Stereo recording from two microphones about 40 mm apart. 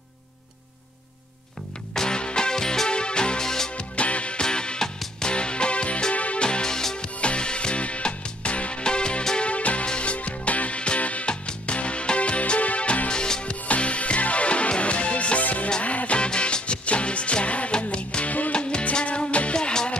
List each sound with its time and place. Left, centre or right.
2.0 s music: left
2.9 s music: left
3.7 s music: left
6.1 s music: left
6.4 s music: left
7.2 s music: left
9.4 s music: left
13.1 s music: left
16.3 s music: left